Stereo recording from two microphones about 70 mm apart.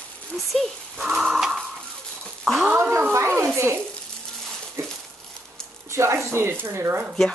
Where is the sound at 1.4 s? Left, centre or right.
Centre.